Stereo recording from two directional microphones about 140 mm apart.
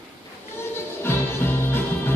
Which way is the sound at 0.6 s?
15° left (ahead or behind).